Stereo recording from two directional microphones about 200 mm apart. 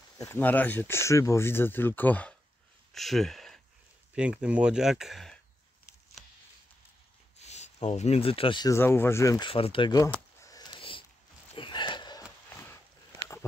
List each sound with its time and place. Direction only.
0.2 s speech: 10° left (ahead or behind)
2.9 s a sound: centre (ahead or behind)
4.1 s speech: 5° right (ahead or behind)
7.3 s speech: 35° left (ahead or behind); by 9.5 s 15° left (ahead or behind)
9.5 s speech: 25° left (ahead or behind)
10.4 s a sound: 20° left (ahead or behind)